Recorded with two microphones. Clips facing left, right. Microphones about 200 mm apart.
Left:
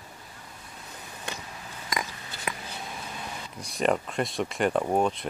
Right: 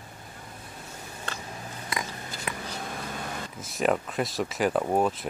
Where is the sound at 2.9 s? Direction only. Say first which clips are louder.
Right 3 dB; 55° right (ahead or behind).